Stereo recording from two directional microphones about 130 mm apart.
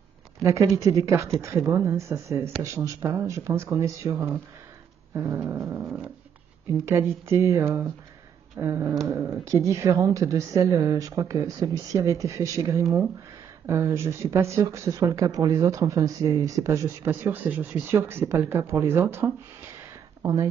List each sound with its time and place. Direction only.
0.4 s speech: 25° right (ahead or behind)
5.1 s growling: 15° right (ahead or behind)
6.9 s speech: 20° right (ahead or behind)